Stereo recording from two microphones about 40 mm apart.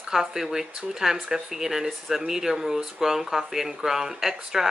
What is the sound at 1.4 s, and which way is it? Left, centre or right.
Speech, centre.